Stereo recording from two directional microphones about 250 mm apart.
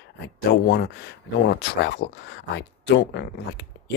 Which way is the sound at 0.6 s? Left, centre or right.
Left.